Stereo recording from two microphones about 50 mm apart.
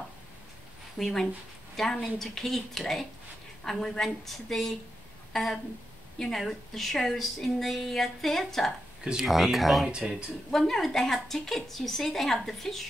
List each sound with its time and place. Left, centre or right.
0.9 s a woman's voice: centre
9.8 s speech: centre
10.5 s a woman's voice: centre